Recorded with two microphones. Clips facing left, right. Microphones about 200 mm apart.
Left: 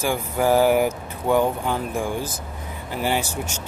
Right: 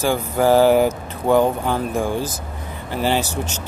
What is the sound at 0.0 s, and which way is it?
Speech, 35° right (ahead or behind).